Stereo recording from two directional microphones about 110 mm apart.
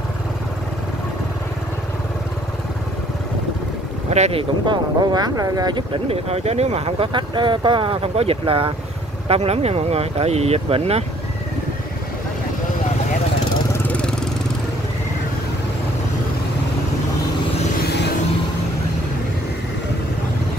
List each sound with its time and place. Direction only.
4.1 s speech: 75° right (ahead or behind)
4.6 s speech: 35° right (ahead or behind)
6.0 s speech: 70° right (ahead or behind)
7.1 s speech: 45° right (ahead or behind)
9.3 s speech: 70° right (ahead or behind)
13.8 s vehicle: 10° left (ahead or behind)